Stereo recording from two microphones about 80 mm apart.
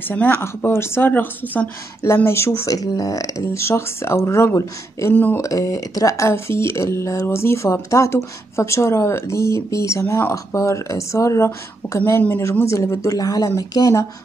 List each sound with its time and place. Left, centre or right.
0.1 s speech: left
2.0 s speech: left
2.7 s speech: left
5.1 s speech: left
5.4 s speech: left